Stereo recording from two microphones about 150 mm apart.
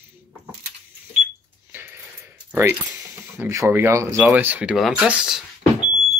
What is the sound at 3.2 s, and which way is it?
Speech, 20° right (ahead or behind).